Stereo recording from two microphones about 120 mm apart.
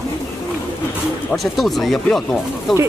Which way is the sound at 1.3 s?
Centre (ahead or behind).